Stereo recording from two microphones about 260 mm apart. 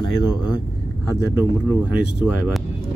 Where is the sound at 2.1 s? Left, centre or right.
Centre.